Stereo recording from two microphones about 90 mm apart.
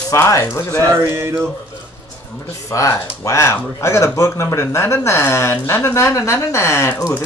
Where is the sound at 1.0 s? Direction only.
25° right (ahead or behind).